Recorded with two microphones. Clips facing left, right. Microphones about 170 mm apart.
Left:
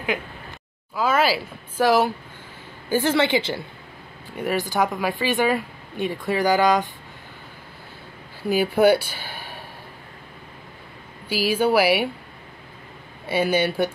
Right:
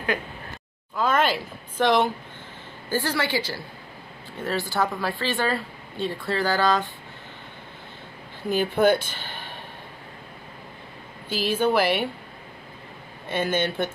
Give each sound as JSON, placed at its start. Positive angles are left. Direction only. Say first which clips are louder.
{"t": 0.9, "sound": "speech", "louder": "left 2 dB", "side_deg": 5}
{"t": 2.9, "sound": "a woman's voice", "louder": "left 6 dB", "side_deg": 20}
{"t": 8.5, "sound": "speech", "louder": "left 3 dB", "side_deg": 10}
{"t": 11.2, "sound": "speech", "louder": "left 2 dB", "side_deg": 10}
{"t": 13.3, "sound": "speech", "louder": "left 4 dB", "side_deg": 10}